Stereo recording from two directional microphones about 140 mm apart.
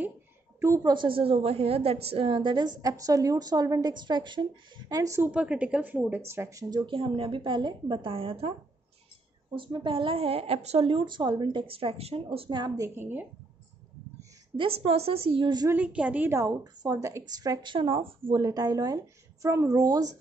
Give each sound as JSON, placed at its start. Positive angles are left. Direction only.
{"t": 0.6, "sound": "a woman's voice", "side_deg": -20}
{"t": 0.9, "sound": "a woman's voice", "side_deg": -40}
{"t": 5.3, "sound": "speech", "side_deg": -10}
{"t": 9.6, "sound": "speech", "side_deg": -35}
{"t": 12.4, "sound": "a woman's voice", "side_deg": -30}
{"t": 14.6, "sound": "a woman's voice", "side_deg": -45}
{"t": 15.7, "sound": "a woman's voice", "side_deg": -10}
{"t": 18.3, "sound": "a woman's voice", "side_deg": -25}